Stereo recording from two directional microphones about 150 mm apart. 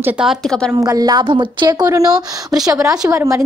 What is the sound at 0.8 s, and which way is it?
A woman's voice, 25° right (ahead or behind).